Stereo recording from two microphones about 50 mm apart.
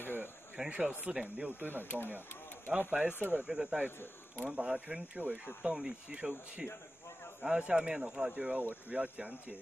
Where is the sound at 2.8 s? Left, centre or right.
Right.